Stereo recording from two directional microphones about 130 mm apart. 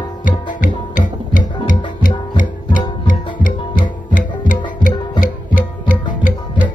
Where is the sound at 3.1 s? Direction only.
90° left.